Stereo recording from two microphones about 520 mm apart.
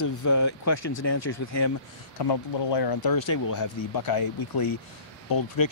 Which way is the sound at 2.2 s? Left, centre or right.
Left.